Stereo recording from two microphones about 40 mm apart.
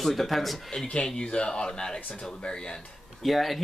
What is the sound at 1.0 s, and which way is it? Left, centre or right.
Speech, left.